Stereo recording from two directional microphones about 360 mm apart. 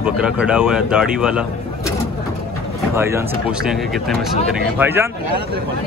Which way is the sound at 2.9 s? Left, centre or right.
Centre.